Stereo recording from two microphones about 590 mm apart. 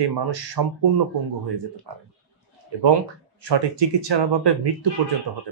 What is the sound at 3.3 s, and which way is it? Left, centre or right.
Speech, right.